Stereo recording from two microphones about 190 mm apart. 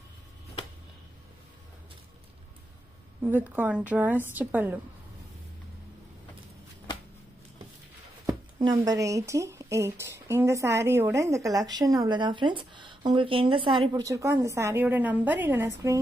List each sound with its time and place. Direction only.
3.2 s speech: 10° right (ahead or behind)
8.3 s speech: 20° right (ahead or behind)